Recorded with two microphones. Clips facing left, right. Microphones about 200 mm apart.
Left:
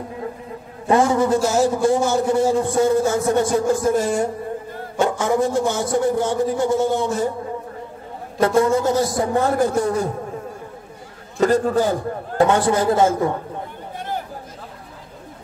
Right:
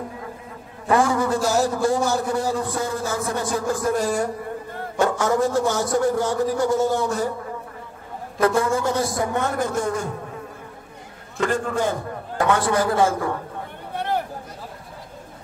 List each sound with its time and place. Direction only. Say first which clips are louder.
0.8 s a man's voice: left 3 dB; 25° left (ahead or behind)
8.4 s a man's voice: left 3 dB; 30° left (ahead or behind)
11.3 s a man's voice: left 6 dB; 40° left (ahead or behind); by 13.3 s 25° left (ahead or behind)
13.9 s a sound: right 4 dB; 65° right (ahead or behind)